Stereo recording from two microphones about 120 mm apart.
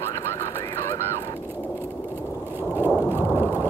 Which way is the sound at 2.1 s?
15° right (ahead or behind).